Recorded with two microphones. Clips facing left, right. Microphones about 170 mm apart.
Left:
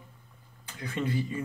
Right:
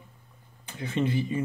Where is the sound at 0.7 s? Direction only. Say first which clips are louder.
Right 4 dB; 25° right (ahead or behind).